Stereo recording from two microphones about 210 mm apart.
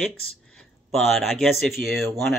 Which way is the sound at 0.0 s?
5° left (ahead or behind).